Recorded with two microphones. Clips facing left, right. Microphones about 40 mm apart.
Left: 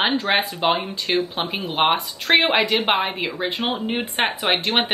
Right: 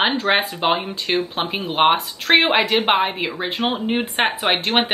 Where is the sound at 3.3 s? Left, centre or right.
Centre.